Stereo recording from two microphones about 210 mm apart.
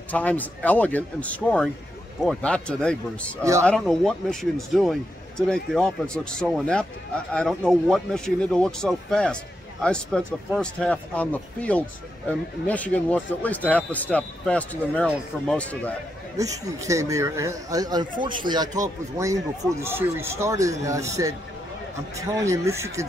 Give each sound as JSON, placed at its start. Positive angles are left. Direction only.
{"t": 0.1, "sound": "speech", "side_deg": 5}
{"t": 16.3, "sound": "a man's voice", "side_deg": -15}